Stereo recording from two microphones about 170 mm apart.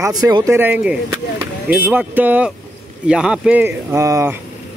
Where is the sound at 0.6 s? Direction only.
10° right (ahead or behind).